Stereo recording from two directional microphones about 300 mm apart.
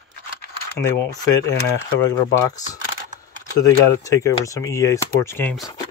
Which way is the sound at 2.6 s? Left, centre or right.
Centre.